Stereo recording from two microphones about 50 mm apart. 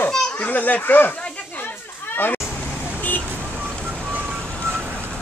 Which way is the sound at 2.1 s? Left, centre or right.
Left.